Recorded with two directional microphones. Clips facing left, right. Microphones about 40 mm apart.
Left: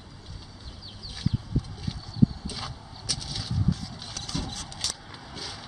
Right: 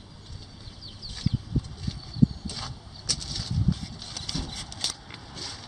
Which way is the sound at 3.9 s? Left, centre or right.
Centre.